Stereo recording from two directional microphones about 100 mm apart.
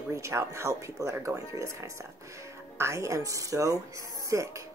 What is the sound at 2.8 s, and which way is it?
Speech, 30° right (ahead or behind).